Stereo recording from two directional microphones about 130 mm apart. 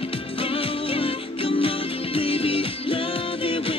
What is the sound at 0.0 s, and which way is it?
Music, 45° left (ahead or behind).